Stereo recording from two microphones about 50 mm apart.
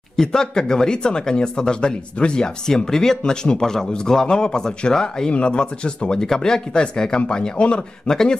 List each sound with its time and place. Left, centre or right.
0.1 s speech: centre